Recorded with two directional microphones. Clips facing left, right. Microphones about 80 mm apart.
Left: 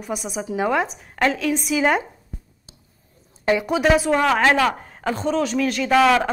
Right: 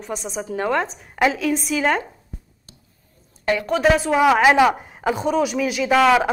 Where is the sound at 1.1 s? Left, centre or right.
Centre.